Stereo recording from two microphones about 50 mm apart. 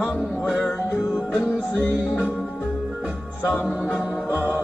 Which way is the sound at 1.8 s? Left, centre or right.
Left.